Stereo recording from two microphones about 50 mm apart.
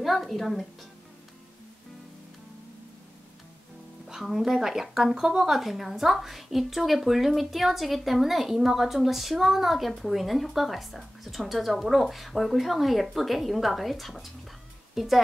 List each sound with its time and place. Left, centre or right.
0.0 s speech: centre
4.1 s speech: centre